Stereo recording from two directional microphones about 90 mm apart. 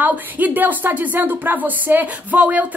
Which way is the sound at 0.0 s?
20° right (ahead or behind).